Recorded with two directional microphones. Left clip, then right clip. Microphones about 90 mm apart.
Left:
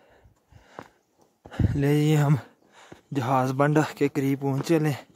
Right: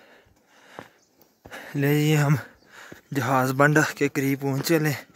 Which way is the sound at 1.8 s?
20° left (ahead or behind).